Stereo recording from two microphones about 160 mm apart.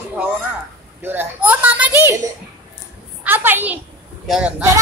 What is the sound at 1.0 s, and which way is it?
A child's voice, 10° right (ahead or behind).